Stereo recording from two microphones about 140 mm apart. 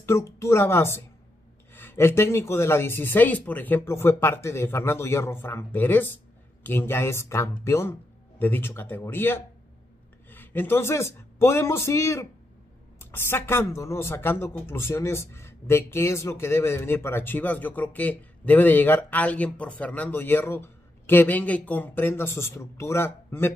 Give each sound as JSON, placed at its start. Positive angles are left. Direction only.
{"t": 0.0, "sound": "speech", "side_deg": 20}